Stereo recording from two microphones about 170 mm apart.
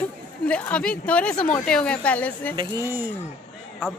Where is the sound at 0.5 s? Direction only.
10° left (ahead or behind).